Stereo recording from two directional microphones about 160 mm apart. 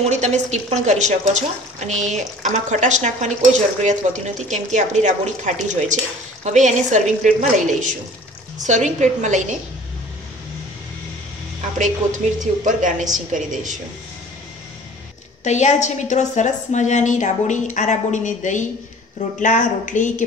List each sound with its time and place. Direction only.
0.0 s speech: 45° right (ahead or behind)
11.8 s speech: 50° right (ahead or behind)
15.4 s a woman's voice: 45° left (ahead or behind)